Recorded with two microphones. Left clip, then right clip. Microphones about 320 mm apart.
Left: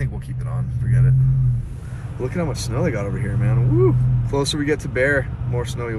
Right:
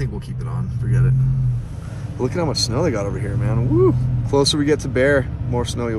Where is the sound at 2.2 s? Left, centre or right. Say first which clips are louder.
Right 5 dB; centre.